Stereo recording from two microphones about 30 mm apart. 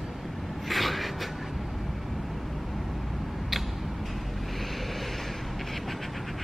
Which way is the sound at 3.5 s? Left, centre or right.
Centre.